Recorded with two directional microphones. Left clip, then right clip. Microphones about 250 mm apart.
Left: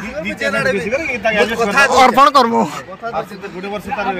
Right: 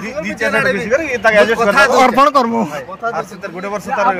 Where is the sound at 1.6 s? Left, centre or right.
Centre.